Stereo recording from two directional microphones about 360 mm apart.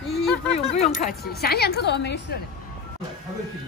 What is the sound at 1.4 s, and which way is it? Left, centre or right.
Speech, left.